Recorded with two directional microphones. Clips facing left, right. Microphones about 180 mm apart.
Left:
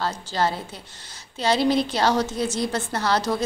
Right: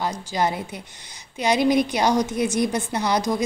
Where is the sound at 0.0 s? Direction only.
15° right (ahead or behind).